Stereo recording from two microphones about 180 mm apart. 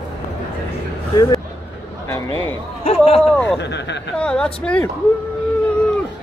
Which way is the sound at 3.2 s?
5° left (ahead or behind).